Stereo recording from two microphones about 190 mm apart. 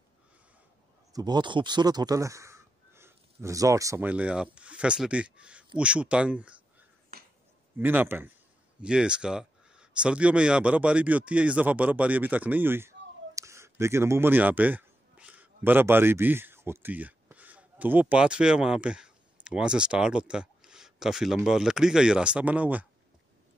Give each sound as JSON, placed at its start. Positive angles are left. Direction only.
{"t": 1.1, "sound": "speech", "side_deg": -20}
{"t": 7.7, "sound": "speech", "side_deg": -10}